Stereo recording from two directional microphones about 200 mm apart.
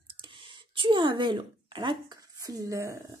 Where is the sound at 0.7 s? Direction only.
25° right (ahead or behind).